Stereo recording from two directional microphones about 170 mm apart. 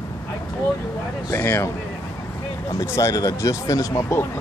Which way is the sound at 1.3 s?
15° left (ahead or behind).